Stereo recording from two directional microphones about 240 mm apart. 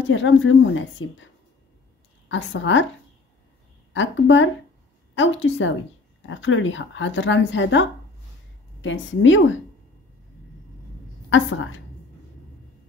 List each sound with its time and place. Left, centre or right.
0.1 s a woman's voice: left
2.2 s a woman's voice: left
3.9 s a woman's voice: left
11.2 s a woman's voice: left